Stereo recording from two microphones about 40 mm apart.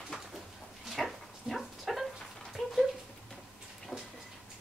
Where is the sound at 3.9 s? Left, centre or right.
Centre.